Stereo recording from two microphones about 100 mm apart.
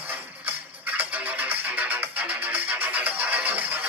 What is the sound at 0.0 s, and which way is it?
Music, 20° right (ahead or behind).